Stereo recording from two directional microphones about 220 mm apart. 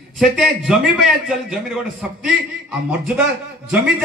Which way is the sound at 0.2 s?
Centre (ahead or behind).